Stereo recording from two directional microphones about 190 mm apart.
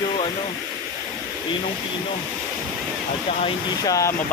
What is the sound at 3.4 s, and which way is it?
Speech, 20° left (ahead or behind).